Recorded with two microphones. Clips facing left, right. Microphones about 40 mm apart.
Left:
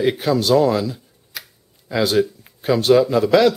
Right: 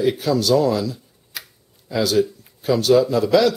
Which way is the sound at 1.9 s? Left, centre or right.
Left.